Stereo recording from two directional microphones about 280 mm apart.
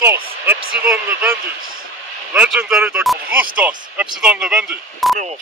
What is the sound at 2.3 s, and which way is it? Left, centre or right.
Speech, centre.